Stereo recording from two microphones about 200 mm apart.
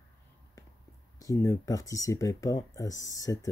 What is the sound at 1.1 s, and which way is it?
Speech, 15° left (ahead or behind).